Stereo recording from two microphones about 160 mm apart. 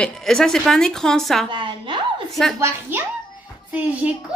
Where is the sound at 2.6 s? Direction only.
15° right (ahead or behind).